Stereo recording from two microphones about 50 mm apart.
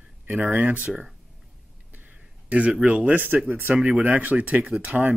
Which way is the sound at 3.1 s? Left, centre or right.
Right.